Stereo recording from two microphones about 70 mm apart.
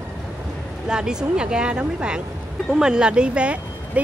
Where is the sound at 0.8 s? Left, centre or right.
Centre.